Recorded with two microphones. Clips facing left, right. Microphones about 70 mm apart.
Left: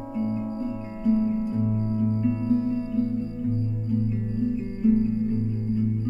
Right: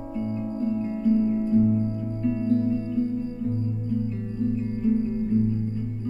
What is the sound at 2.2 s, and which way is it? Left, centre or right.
Music, centre.